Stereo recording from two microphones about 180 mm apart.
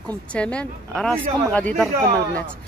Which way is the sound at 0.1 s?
5° left (ahead or behind).